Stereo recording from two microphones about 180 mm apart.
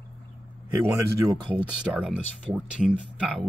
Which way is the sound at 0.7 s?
15° right (ahead or behind).